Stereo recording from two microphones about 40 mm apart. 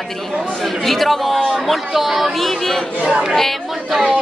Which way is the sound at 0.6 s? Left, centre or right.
Centre.